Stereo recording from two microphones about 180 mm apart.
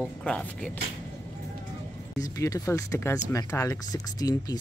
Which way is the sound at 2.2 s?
20° left (ahead or behind).